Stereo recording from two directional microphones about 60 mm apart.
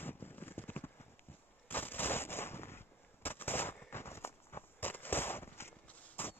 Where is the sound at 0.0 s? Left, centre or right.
Left.